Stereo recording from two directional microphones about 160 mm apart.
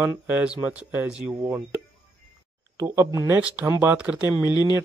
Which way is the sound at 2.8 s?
20° right (ahead or behind).